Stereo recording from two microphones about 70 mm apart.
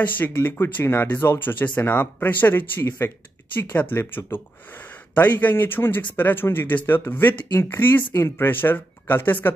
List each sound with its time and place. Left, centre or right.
0.0 s speech: left
3.9 s speech: left